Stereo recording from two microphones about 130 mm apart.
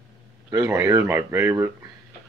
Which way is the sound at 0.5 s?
20° right (ahead or behind).